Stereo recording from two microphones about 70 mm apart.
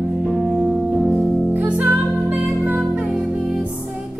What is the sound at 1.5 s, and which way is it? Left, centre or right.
Music, right.